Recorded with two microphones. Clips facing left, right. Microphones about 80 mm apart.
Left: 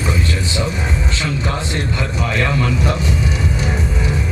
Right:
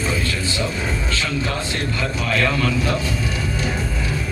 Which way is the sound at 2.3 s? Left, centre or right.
Left.